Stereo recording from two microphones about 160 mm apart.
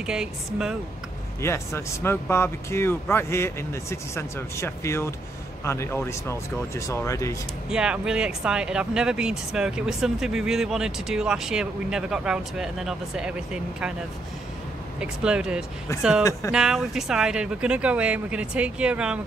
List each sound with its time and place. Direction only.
0.0 s speech: 5° right (ahead or behind)
1.4 s speech: 15° left (ahead or behind)
7.7 s speech: 5° right (ahead or behind)
15.0 s speech: 5° right (ahead or behind)